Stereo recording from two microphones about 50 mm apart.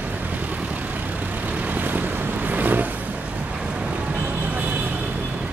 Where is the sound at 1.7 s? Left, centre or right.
Right.